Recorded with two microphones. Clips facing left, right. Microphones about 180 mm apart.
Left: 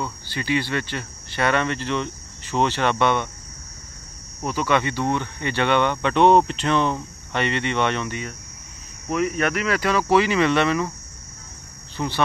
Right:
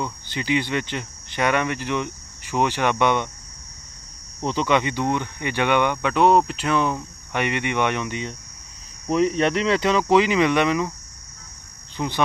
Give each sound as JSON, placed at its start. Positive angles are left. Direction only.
{"t": 0.0, "sound": "speech", "side_deg": -20}
{"t": 4.5, "sound": "speech", "side_deg": -20}
{"t": 12.0, "sound": "speech", "side_deg": -10}